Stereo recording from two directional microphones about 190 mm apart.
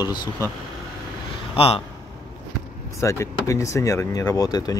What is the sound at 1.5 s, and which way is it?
Speech, 30° left (ahead or behind).